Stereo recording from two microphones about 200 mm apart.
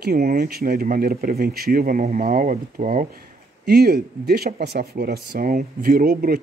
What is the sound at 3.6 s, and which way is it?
Speech, 50° right (ahead or behind).